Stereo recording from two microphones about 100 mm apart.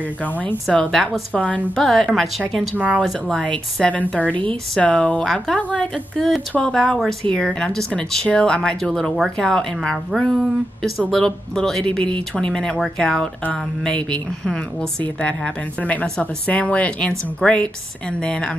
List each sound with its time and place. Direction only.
0.2 s a woman's voice: 15° left (ahead or behind)